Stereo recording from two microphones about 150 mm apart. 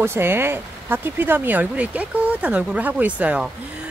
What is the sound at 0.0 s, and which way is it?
Speech, 15° right (ahead or behind).